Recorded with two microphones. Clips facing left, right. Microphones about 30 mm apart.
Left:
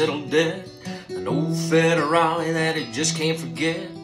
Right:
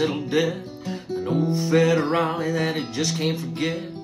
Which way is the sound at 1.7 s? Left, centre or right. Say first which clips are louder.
Left 1 dB; left.